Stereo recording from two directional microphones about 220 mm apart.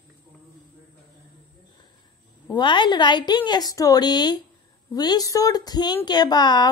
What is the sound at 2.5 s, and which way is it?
Speech, 20° left (ahead or behind).